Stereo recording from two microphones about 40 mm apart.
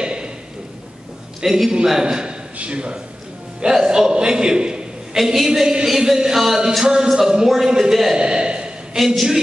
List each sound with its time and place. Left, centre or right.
0.0 s a sound: right
1.4 s speech: centre
2.5 s a man's voice: right
5.1 s speech: centre
8.2 s a sound: right
8.9 s speech: centre